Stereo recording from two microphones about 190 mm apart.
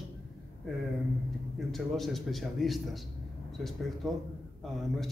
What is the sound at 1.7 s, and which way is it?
A man's voice, centre (ahead or behind).